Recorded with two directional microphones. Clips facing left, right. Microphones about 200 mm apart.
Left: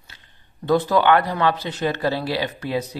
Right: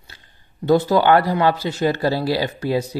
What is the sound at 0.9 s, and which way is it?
Speech, 35° right (ahead or behind).